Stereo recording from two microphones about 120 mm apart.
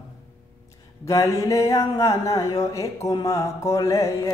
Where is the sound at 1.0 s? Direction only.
30° left (ahead or behind).